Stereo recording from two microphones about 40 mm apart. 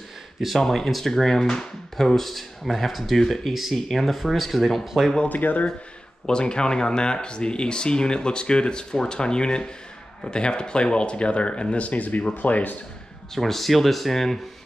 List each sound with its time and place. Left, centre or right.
0.6 s speech: centre
5.3 s speech: left
6.2 s speech: left
13.3 s speech: centre